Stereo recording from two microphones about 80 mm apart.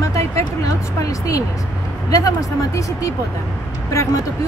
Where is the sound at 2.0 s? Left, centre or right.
Left.